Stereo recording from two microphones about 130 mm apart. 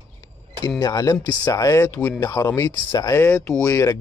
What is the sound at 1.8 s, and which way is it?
Speech, 15° left (ahead or behind).